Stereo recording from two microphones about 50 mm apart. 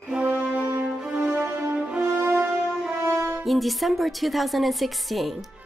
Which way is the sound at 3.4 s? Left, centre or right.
Centre.